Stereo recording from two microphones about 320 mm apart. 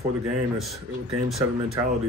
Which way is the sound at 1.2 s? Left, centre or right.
Centre.